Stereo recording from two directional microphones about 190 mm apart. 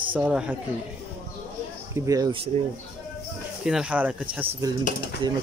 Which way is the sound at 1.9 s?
15° right (ahead or behind).